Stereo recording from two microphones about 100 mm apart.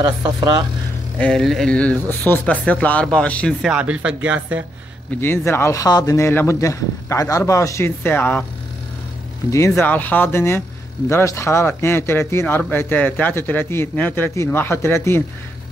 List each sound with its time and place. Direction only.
0.0 s speech: 35° right (ahead or behind)
1.1 s speech: 15° left (ahead or behind)
3.6 s speech: 10° right (ahead or behind)
5.2 s speech: 25° left (ahead or behind)
9.8 s speech: 15° left (ahead or behind)